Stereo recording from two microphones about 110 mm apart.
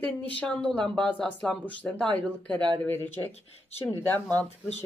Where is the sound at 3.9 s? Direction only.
20° left (ahead or behind).